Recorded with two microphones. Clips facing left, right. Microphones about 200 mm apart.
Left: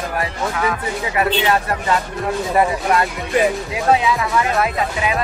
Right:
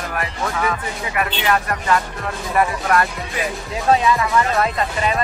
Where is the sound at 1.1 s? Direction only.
30° left (ahead or behind).